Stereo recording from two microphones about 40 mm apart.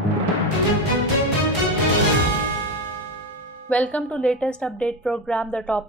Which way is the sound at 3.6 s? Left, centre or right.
Left.